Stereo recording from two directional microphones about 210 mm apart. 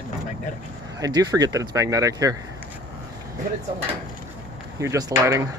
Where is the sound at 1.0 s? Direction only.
15° right (ahead or behind).